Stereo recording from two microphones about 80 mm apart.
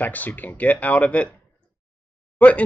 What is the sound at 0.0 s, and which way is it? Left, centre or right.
Speech, left.